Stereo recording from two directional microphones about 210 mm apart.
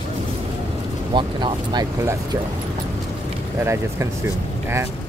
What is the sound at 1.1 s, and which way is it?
Speech, 20° right (ahead or behind).